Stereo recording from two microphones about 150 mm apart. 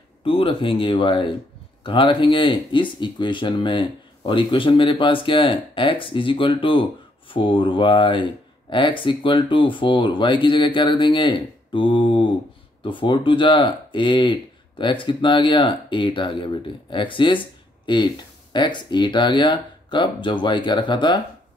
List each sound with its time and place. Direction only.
0.2 s speech: 40° left (ahead or behind)